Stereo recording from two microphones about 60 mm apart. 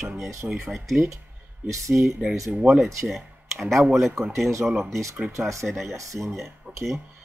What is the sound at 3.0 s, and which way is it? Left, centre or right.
Speech, centre.